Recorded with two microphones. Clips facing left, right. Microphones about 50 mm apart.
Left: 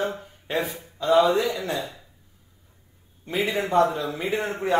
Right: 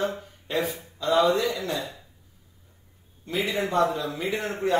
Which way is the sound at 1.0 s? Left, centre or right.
Left.